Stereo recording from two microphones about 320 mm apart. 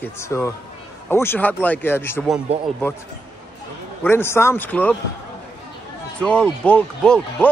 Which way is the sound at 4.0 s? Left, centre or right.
Centre.